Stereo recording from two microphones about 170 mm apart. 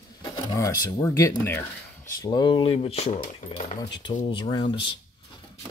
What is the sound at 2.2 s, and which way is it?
Speech, 25° left (ahead or behind).